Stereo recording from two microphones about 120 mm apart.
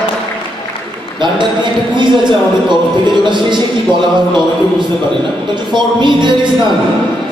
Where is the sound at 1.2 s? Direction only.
40° right (ahead or behind).